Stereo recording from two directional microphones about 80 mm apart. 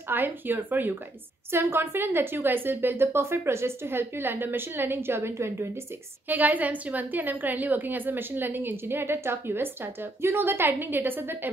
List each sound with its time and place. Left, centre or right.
0.1 s a woman's voice: right
6.2 s a woman's voice: right